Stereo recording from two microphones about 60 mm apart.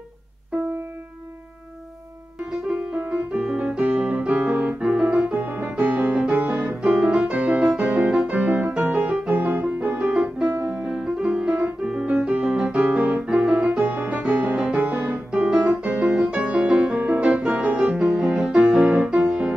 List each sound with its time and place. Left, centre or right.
3.0 s music: right
4.8 s keyboard: centre
5.1 s music: right
6.8 s piano: centre
7.2 s music: centre
11.8 s piano: centre
12.7 s keyboard: right
13.3 s piano: centre
13.7 s music: right
15.6 s piano: right
16.1 s music: centre
17.9 s music: centre
18.9 s music: right